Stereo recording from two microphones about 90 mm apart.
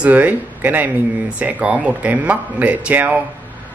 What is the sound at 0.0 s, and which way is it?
Speech, 15° right (ahead or behind).